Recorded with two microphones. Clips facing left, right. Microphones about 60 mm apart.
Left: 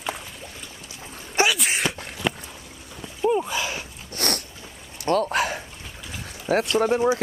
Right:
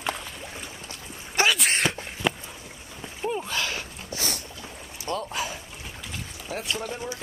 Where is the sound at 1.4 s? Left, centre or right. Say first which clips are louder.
Even; centre.